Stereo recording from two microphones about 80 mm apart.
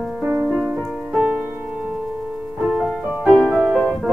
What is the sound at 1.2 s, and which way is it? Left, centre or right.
Music, centre.